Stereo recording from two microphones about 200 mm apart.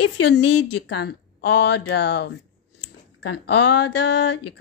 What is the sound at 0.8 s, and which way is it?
Speech, 60° left (ahead or behind).